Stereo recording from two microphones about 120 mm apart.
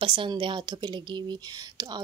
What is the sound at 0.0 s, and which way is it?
A woman's voice, 45° right (ahead or behind).